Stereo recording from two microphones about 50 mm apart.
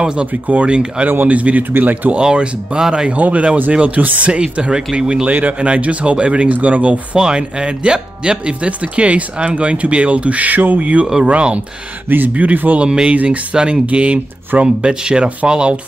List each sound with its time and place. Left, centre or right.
0.0 s speech: centre
1.0 s speech: right
2.1 s speech: centre
3.2 s speech: right
4.4 s speech: centre
5.2 s speech: right
7.2 s speech: centre
12.1 s speech: right
12.7 s speech: centre